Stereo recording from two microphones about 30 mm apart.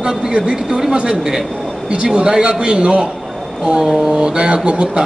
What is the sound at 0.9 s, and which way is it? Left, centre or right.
Speech, right.